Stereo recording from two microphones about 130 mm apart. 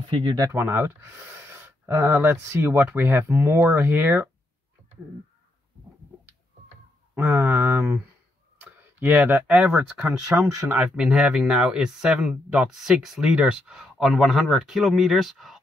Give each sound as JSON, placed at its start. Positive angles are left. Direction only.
{"t": 0.5, "sound": "speech", "side_deg": -15}
{"t": 7.2, "sound": "speech", "side_deg": -15}